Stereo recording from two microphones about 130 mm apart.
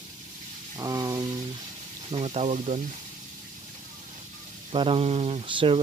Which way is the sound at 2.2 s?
60° right (ahead or behind).